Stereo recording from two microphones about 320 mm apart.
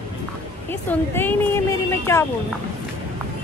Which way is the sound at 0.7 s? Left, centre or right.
Centre.